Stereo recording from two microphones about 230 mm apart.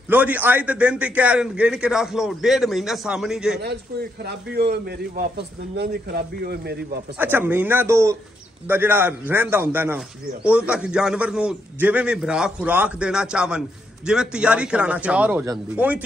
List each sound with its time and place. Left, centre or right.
0.1 s a man's voice: centre
3.6 s a man's voice: right
7.2 s a man's voice: centre